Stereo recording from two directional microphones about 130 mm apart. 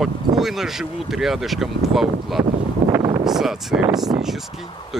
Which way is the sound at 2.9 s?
30° right (ahead or behind).